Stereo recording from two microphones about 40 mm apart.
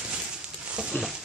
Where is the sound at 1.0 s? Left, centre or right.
Left.